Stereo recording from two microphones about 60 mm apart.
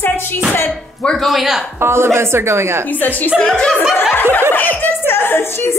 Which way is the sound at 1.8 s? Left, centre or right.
Right.